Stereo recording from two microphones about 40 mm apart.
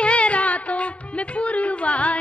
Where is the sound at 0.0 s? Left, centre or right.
Left.